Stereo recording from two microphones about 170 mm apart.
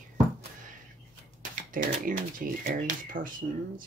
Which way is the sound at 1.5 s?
50° right (ahead or behind).